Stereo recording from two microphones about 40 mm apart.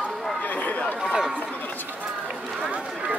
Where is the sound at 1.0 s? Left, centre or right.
Centre.